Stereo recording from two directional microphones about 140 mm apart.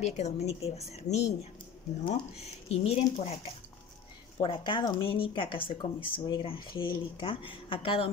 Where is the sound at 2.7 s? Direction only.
50° left (ahead or behind).